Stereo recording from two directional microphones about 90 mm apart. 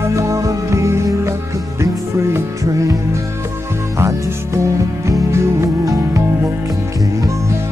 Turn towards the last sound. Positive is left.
turn(degrees=-40)  # may be behind; listen again after turning